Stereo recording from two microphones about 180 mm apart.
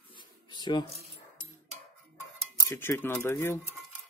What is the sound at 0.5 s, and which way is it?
Speech, 25° left (ahead or behind).